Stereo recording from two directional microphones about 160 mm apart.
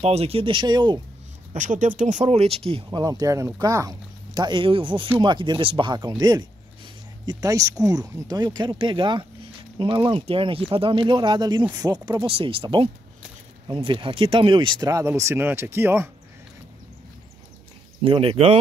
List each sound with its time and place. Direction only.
0.0 s speech: 40° right (ahead or behind)
1.5 s speech: 50° right (ahead or behind)
3.0 s speech: 25° right (ahead or behind)
18.0 s speech: 35° right (ahead or behind)